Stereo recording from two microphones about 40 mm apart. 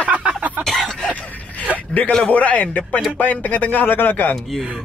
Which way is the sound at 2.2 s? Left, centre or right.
Left.